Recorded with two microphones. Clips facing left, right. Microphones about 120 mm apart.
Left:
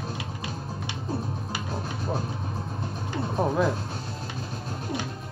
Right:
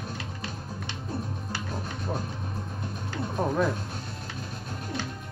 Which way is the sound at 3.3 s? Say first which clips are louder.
Left 2 dB; 5° left (ahead or behind).